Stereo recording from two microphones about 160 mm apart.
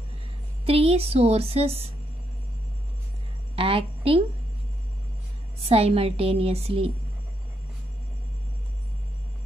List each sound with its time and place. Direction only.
0.7 s a woman's voice: 35° right (ahead or behind)
3.5 s a woman's voice: 35° right (ahead or behind)
5.6 s a woman's voice: 40° right (ahead or behind)